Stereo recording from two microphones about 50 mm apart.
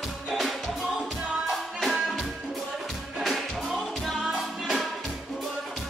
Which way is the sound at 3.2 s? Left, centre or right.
Centre.